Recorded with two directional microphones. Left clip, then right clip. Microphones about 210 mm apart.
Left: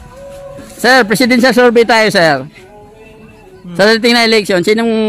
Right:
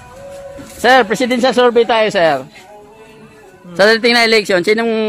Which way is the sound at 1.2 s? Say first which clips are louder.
Left 3 dB; 20° left (ahead or behind).